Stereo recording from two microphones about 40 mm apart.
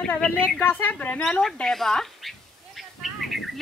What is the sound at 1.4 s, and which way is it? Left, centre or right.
Speech, centre.